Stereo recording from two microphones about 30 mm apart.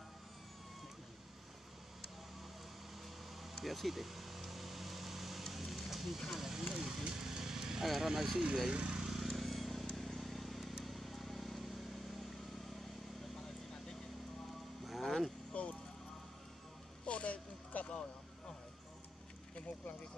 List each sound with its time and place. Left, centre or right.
3.5 s vehicle: centre
7.8 s speech: centre
8.6 s speech: right
9.0 s vehicle: centre
14.9 s vehicle: centre
15.5 s music: left
17.0 s a sound: left
17.7 s vehicle: left